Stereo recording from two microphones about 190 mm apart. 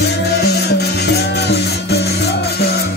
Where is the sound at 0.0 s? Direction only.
60° left (ahead or behind).